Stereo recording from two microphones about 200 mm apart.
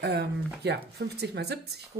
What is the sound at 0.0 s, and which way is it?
Speech, 55° right (ahead or behind).